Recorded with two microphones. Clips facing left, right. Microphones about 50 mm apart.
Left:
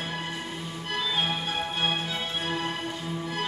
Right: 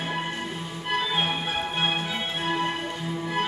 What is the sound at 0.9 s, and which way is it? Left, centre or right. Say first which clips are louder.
Music: right 3 dB; right.